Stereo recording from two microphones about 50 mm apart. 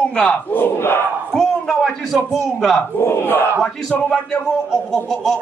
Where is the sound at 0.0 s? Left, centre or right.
Centre.